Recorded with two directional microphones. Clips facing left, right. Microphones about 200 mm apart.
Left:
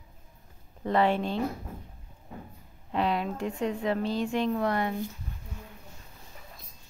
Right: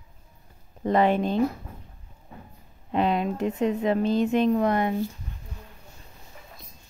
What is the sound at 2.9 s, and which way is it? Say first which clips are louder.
Speech: right 4 dB; 20° right (ahead or behind).